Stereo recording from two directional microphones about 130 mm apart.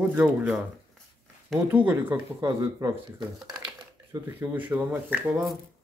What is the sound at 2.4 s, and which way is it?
Speech, 35° right (ahead or behind).